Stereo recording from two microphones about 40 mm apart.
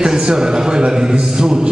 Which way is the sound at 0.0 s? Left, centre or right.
Centre.